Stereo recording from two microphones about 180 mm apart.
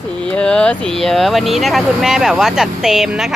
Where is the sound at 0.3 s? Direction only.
5° left (ahead or behind).